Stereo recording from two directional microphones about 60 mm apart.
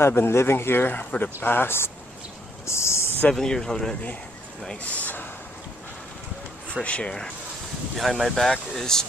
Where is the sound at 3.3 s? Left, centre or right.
Centre.